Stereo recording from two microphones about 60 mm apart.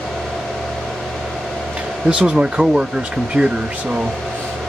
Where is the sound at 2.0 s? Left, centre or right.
Centre.